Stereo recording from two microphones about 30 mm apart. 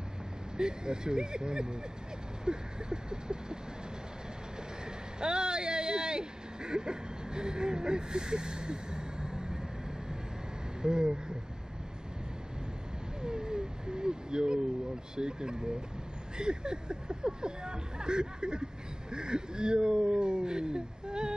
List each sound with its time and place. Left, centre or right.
0.6 s speech: right
5.2 s speech: right
10.8 s speech: right
13.2 s a sound: right
15.1 s speech: right